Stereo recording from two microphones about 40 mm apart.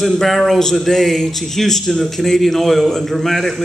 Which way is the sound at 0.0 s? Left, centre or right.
Centre.